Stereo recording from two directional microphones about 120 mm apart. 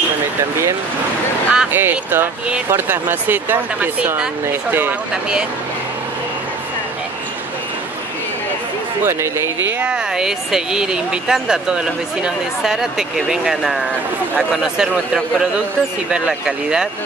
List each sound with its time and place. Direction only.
1.5 s speech: 5° right (ahead or behind)
1.8 s speech: 20° right (ahead or behind)
9.0 s speech: 20° right (ahead or behind); by 16.8 s 5° right (ahead or behind)